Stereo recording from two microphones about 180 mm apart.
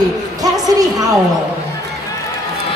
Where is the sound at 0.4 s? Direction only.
20° right (ahead or behind).